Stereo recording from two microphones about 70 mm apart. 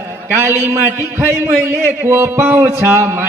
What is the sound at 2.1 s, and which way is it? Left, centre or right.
Music, right.